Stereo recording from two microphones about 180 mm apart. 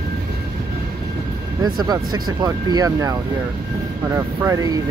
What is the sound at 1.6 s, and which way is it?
Speech, 20° right (ahead or behind).